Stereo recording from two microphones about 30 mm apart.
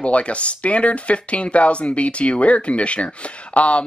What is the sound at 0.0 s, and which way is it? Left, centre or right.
Speech, left.